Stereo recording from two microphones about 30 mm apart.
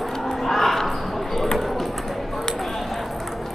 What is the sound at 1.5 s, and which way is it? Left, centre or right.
Clip-clop, centre.